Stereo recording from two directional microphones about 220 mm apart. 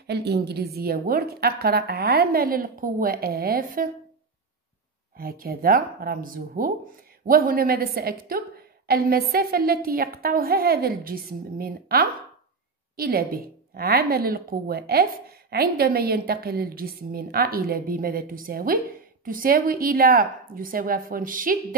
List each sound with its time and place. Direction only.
0.0 s a woman's voice: 50° right (ahead or behind)
5.1 s a woman's voice: 40° right (ahead or behind)